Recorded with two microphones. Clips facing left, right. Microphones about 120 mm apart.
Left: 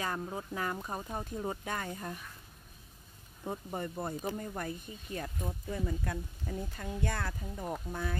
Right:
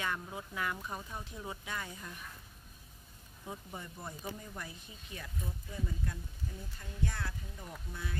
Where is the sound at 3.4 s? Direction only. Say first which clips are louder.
Left 8 dB; 50° left (ahead or behind).